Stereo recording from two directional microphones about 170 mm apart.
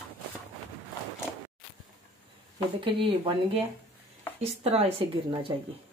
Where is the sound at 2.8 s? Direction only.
30° right (ahead or behind).